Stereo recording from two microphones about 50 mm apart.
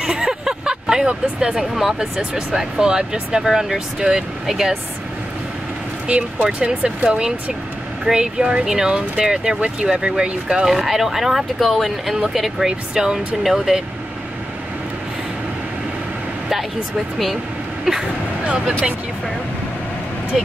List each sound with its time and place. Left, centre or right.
0.0 s speech: centre
6.0 s speech: right
10.7 s speech: centre
17.9 s speech: centre
20.3 s speech: centre